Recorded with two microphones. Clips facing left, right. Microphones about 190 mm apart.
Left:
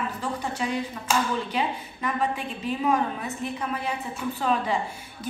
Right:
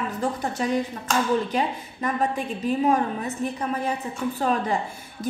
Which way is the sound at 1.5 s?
45° right (ahead or behind).